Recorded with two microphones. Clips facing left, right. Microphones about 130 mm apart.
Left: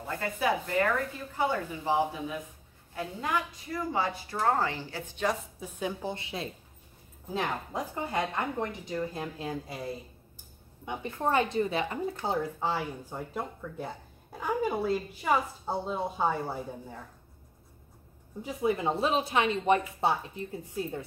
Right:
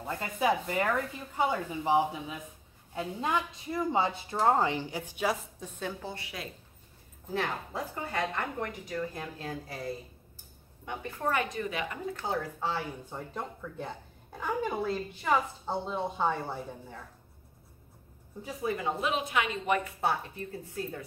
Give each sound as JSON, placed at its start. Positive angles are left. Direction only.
{"t": 0.0, "sound": "a woman's voice", "side_deg": -20}
{"t": 5.6, "sound": "a woman's voice", "side_deg": 15}
{"t": 10.9, "sound": "a woman's voice", "side_deg": 20}
{"t": 18.4, "sound": "a woman's voice", "side_deg": 20}
{"t": 20.0, "sound": "speech", "side_deg": 20}